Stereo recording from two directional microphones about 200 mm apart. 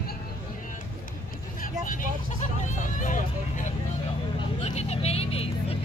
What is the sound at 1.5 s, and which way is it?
Vehicle, 40° left (ahead or behind).